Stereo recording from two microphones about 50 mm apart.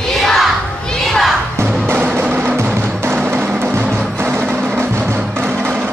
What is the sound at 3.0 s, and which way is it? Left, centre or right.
Music, right.